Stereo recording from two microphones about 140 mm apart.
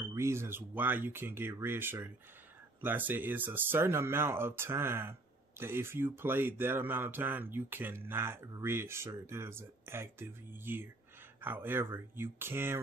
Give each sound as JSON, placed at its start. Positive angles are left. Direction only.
{"t": 0.0, "sound": "speech", "side_deg": -20}